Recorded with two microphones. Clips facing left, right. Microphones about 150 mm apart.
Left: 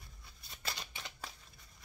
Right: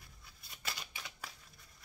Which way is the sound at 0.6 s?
30° left (ahead or behind).